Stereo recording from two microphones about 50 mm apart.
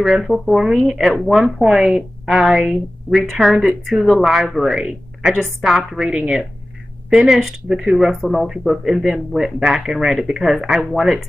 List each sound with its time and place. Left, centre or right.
0.0 s a woman's voice: centre
6.0 s speech: centre